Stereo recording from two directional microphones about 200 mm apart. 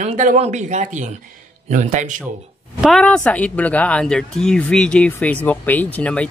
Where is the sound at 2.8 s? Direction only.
Centre (ahead or behind).